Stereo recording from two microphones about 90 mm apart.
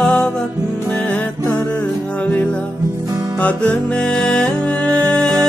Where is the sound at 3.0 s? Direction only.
40° right (ahead or behind).